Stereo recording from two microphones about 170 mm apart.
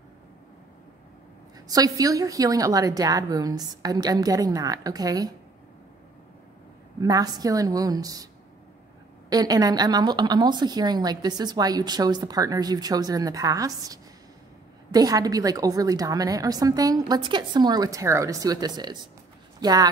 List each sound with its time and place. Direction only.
1.7 s a woman's voice: 20° right (ahead or behind)
7.0 s a woman's voice: 20° right (ahead or behind)
9.3 s a woman's voice: 20° right (ahead or behind)